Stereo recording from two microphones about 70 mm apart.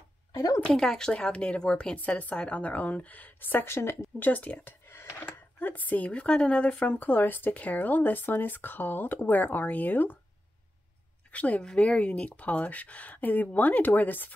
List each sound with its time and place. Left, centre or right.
0.3 s a sound: left
0.7 s a woman's voice: centre; by 4.1 s left
4.2 s a woman's voice: left
4.8 s a sound: left
5.2 s a woman's voice: left
11.3 s a woman's voice: centre